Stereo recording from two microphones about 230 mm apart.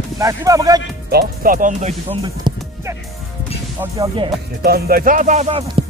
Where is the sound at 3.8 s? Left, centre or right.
Centre.